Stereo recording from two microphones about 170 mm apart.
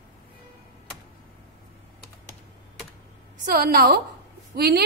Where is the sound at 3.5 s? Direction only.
60° right (ahead or behind).